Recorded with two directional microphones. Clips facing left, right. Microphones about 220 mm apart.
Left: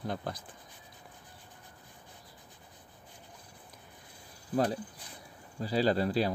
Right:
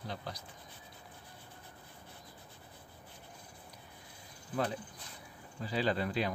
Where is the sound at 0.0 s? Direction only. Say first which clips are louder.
Left 6 dB; 50° left (ahead or behind).